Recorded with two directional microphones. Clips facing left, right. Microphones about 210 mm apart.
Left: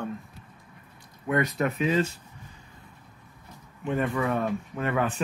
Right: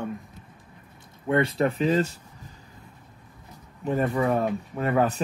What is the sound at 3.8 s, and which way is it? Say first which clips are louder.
Speech: right 3 dB; 40° right (ahead or behind).